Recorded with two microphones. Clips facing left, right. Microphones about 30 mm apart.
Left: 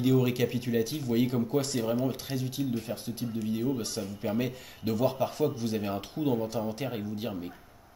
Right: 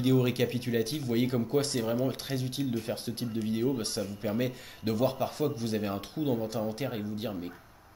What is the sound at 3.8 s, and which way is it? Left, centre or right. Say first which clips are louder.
Speech: right 1 dB; right.